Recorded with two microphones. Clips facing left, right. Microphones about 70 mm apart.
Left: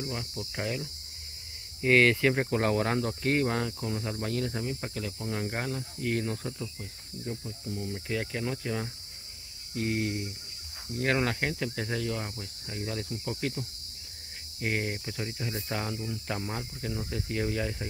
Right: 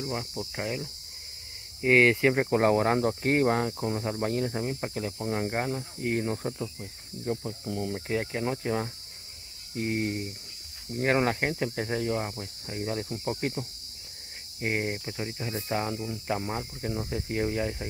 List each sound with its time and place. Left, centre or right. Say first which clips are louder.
0.1 s speech: right 4 dB; right
0.6 s speech: even; centre; by 6.9 s right
7.2 s speech: right 6 dB; right
8.2 s speech: right 3 dB; right
13.1 s speech: right 3 dB; right
14.6 s speech: right 2 dB; centre